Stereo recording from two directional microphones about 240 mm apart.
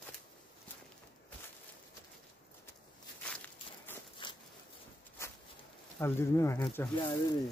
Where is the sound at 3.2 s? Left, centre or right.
Centre.